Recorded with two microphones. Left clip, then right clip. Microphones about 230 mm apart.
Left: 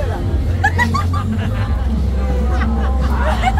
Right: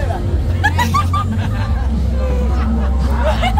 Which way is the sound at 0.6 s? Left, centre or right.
Centre.